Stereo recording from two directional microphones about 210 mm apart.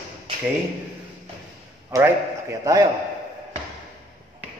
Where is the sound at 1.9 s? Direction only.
10° right (ahead or behind).